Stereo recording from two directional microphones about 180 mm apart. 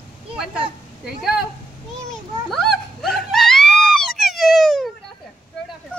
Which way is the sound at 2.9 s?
Centre (ahead or behind).